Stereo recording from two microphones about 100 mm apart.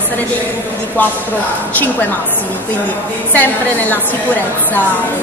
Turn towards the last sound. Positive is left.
turn(degrees=15)  # may be behind; listen again after turning